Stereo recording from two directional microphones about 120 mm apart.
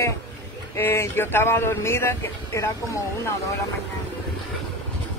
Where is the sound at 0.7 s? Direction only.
20° left (ahead or behind).